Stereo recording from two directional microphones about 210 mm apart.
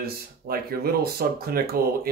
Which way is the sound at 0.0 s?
45° right (ahead or behind).